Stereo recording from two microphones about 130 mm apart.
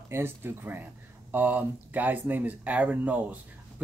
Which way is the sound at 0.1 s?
15° right (ahead or behind).